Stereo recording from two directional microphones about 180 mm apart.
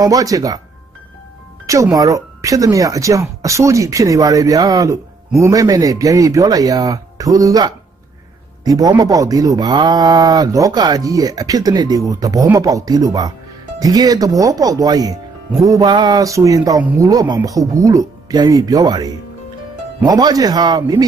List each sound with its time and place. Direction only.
0.0 s speech: 20° right (ahead or behind)
1.7 s speech: 20° right (ahead or behind)